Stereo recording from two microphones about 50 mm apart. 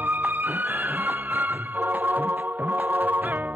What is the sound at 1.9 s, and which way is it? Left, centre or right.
Music, right.